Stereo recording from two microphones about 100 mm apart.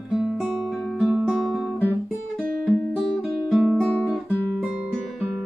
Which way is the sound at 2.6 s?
5° right (ahead or behind).